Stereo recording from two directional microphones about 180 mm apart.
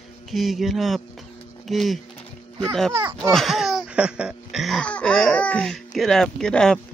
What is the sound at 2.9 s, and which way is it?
Speech, 20° right (ahead or behind).